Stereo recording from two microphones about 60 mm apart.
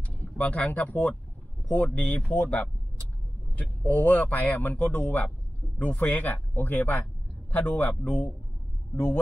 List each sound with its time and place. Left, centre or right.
0.0 s speech: left